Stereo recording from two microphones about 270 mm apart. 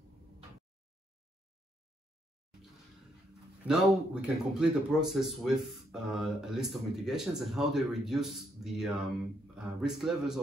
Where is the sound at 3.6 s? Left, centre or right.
Centre.